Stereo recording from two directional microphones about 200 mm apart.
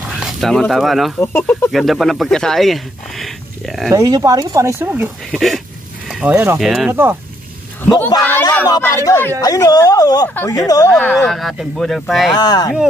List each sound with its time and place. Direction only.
0.1 s speech: centre (ahead or behind)
1.3 s speech: 10° left (ahead or behind)
1.7 s speech: centre (ahead or behind)
3.9 s speech: 15° right (ahead or behind); by 6.9 s centre (ahead or behind)
6.9 s speech: 10° right (ahead or behind)
8.1 s speech: 10° left (ahead or behind)
11.0 s speech: centre (ahead or behind)
12.4 s speech: 20° left (ahead or behind)